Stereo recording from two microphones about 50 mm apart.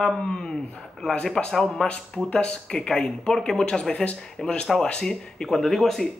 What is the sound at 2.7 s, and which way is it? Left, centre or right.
Speech, centre.